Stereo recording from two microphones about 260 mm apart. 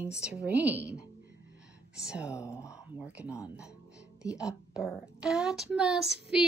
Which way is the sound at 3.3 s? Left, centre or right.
Centre.